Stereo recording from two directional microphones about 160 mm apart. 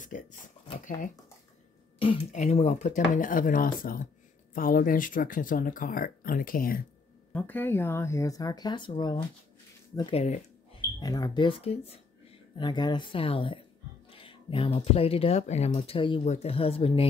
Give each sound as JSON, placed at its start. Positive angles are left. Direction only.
{"t": 0.1, "sound": "speech", "side_deg": 55}
{"t": 2.0, "sound": "speech", "side_deg": 35}
{"t": 7.3, "sound": "speech", "side_deg": 10}
{"t": 12.5, "sound": "speech", "side_deg": 25}